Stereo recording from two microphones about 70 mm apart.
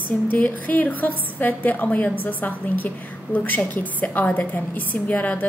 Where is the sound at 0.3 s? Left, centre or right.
Left.